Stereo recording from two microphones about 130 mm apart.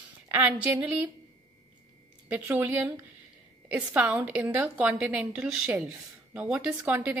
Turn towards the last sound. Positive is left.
turn(degrees=-15)  # may be behind; listen again after turning